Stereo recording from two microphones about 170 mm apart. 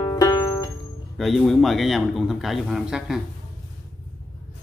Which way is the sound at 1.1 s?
Centre (ahead or behind).